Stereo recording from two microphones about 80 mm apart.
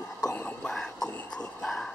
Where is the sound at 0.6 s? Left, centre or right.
Centre.